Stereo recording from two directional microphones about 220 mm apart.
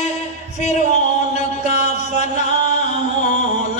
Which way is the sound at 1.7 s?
30° left (ahead or behind).